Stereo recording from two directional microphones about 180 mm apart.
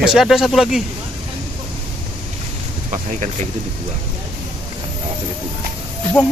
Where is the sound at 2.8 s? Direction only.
45° right (ahead or behind).